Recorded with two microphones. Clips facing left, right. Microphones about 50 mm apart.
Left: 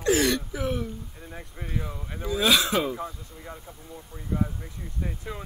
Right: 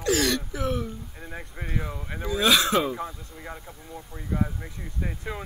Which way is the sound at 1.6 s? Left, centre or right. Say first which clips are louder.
Right 1 dB; centre.